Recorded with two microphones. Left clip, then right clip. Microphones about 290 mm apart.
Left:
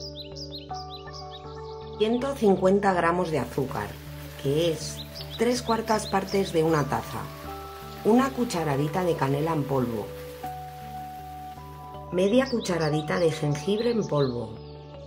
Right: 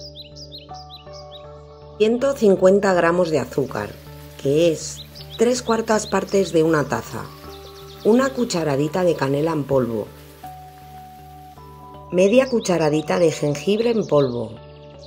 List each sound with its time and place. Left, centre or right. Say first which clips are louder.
2.0 s speech: right 8 dB; centre
12.1 s speech: right 8 dB; centre